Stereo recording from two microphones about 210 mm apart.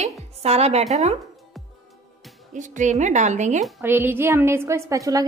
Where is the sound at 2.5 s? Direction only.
35° right (ahead or behind).